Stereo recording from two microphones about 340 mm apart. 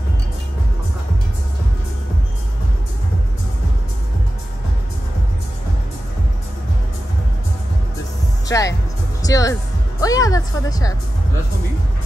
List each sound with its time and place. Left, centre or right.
8.5 s speech: centre